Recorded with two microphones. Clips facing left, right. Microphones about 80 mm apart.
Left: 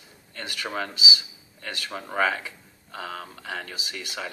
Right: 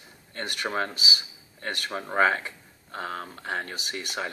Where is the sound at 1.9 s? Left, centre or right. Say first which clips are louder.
Right 2 dB; right.